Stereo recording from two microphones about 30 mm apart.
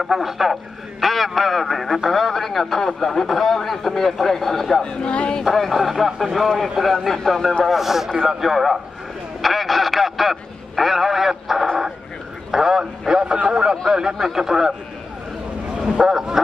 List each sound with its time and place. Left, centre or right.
0.0 s a man's voice: centre
4.8 s speech: left
5.4 s a man's voice: centre
6.3 s a man's voice: centre
7.6 s a man's voice: centre
9.4 s a sound: centre
12.5 s a man's voice: centre
13.1 s a man's voice: right
13.9 s a man's voice: centre
14.2 s a man's voice: centre
16.1 s a man's voice: centre